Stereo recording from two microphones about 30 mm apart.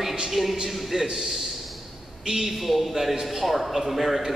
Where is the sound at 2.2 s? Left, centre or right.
Centre.